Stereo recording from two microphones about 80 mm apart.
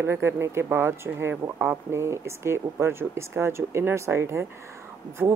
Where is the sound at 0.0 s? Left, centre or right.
Right.